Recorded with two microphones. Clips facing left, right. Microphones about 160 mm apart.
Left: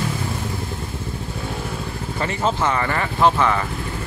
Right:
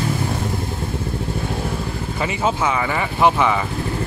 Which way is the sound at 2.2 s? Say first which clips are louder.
Right 1 dB; 5° right (ahead or behind).